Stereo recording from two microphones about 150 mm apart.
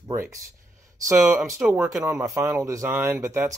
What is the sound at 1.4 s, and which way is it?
Speech, 15° right (ahead or behind).